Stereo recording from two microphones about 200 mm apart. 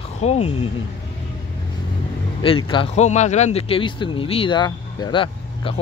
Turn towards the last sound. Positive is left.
turn(degrees=25)  # may be behind; listen again after turning